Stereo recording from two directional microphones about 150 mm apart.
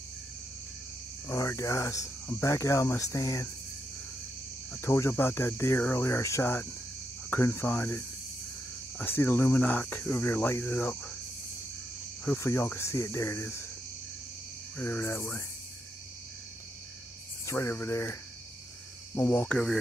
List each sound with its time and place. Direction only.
1.2 s speech: 20° left (ahead or behind)
4.7 s speech: 15° left (ahead or behind)
12.3 s speech: 15° left (ahead or behind)
14.8 s speech: 15° left (ahead or behind)
17.5 s speech: 15° left (ahead or behind)
19.1 s speech: 10° left (ahead or behind)